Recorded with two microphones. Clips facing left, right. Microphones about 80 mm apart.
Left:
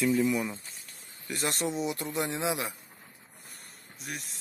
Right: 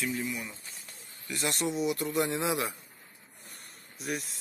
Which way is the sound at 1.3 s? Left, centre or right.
Left.